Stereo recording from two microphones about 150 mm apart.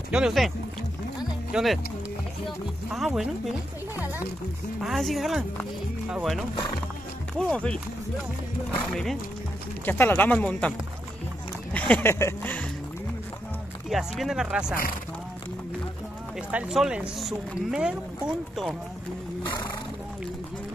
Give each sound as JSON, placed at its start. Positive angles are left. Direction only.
{"t": 0.1, "sound": "speech", "side_deg": -5}
{"t": 1.5, "sound": "speech", "side_deg": 0}
{"t": 4.8, "sound": "speech", "side_deg": 0}
{"t": 8.8, "sound": "speech", "side_deg": 5}
{"t": 11.7, "sound": "speech", "side_deg": 10}
{"t": 13.8, "sound": "speech", "side_deg": 0}
{"t": 16.5, "sound": "speech", "side_deg": -5}